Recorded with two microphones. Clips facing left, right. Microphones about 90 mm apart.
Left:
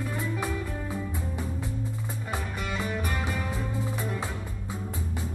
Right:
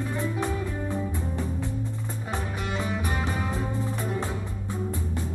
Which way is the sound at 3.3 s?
35° right (ahead or behind).